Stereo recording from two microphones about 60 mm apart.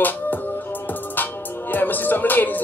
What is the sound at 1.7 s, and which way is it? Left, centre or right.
Speech, left.